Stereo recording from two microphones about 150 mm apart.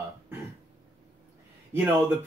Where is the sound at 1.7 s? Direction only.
15° right (ahead or behind).